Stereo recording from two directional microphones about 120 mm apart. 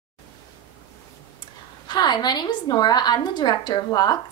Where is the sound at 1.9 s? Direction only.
35° left (ahead or behind).